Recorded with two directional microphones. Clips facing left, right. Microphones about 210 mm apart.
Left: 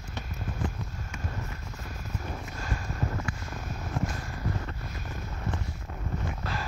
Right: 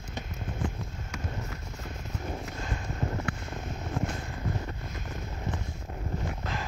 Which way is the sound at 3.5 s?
20° right (ahead or behind).